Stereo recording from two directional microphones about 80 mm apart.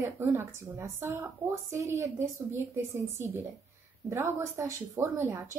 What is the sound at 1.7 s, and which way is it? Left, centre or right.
A woman's voice, right.